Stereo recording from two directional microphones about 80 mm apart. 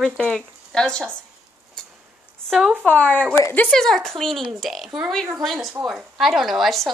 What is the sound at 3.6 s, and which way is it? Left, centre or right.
Speech, centre.